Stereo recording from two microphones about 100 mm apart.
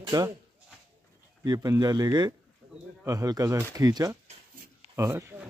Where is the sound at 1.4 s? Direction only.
40° right (ahead or behind); by 5.4 s 25° right (ahead or behind).